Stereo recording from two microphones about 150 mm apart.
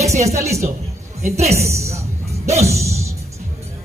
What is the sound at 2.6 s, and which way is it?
Music, 20° right (ahead or behind).